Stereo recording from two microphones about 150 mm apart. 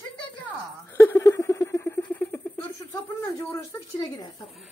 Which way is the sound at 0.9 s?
15° left (ahead or behind).